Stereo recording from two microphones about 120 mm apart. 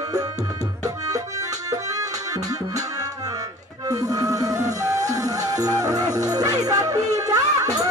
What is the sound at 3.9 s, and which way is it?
Music, 30° right (ahead or behind).